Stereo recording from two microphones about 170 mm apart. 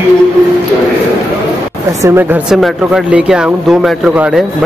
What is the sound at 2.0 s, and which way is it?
Speech, 15° right (ahead or behind).